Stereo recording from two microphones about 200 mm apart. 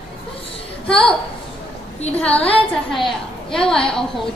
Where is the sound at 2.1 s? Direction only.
5° left (ahead or behind).